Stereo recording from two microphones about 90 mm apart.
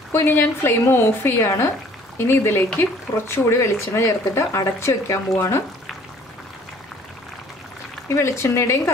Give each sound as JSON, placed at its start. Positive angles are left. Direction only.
{"t": 0.1, "sound": "speech", "side_deg": 25}
{"t": 8.1, "sound": "speech", "side_deg": 30}